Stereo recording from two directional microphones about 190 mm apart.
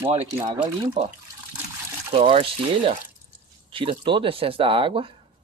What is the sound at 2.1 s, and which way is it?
Speech, 30° right (ahead or behind).